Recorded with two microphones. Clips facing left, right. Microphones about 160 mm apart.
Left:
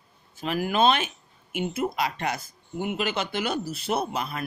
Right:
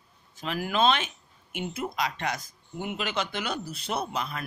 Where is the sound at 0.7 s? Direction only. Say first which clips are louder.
Left 2 dB; 50° left (ahead or behind).